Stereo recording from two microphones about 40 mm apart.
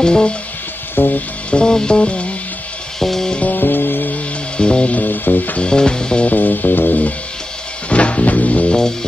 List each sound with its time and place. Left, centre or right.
0.0 s music: left
0.9 s music: left
1.5 s music: left
3.0 s music: centre
3.4 s music: left
4.6 s music: left
4.9 s music: left
5.6 s music: left
6.2 s music: left
7.9 s music: left